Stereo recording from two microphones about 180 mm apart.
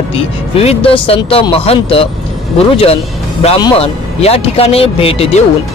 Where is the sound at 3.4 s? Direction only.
30° left (ahead or behind).